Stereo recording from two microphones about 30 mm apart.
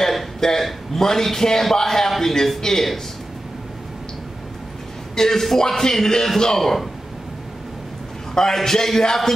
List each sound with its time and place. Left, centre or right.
0.0 s a sound: centre
0.4 s a man's voice: centre
5.1 s a man's voice: centre
8.5 s a man's voice: centre